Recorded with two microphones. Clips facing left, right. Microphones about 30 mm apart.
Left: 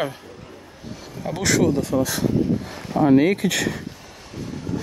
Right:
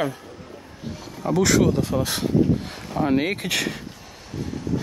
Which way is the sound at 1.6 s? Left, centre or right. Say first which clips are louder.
Even; centre.